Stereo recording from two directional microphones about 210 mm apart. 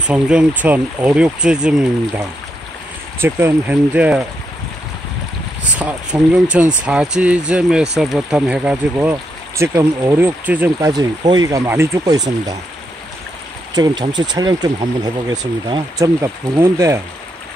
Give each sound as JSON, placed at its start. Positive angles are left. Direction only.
{"t": 0.0, "sound": "speech", "side_deg": -5}
{"t": 5.8, "sound": "speech", "side_deg": -5}
{"t": 13.7, "sound": "speech", "side_deg": -20}